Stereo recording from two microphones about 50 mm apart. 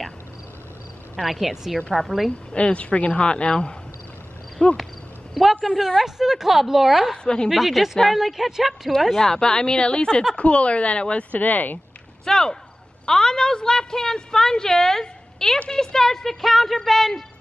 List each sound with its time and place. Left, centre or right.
1.2 s speech: centre
2.5 s speech: left
5.3 s a woman's voice: centre
9.3 s a woman's voice: centre; by 11.8 s left
12.3 s a woman's voice: centre